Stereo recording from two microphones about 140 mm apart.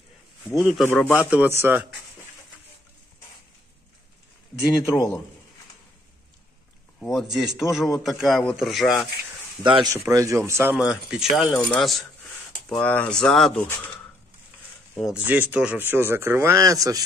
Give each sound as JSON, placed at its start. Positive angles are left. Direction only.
{"t": 0.8, "sound": "speech", "side_deg": 15}
{"t": 1.3, "sound": "speech", "side_deg": -15}
{"t": 4.6, "sound": "a man's voice", "side_deg": 30}
{"t": 7.0, "sound": "a man's voice", "side_deg": 0}
{"t": 9.6, "sound": "speech", "side_deg": -35}
{"t": 9.9, "sound": "a man's voice", "side_deg": -25}
{"t": 10.7, "sound": "a man's voice", "side_deg": -5}
{"t": 15.0, "sound": "a man's voice", "side_deg": -5}